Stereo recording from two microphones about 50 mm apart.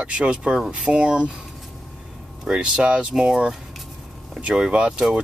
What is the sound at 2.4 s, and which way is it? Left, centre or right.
Speech, centre.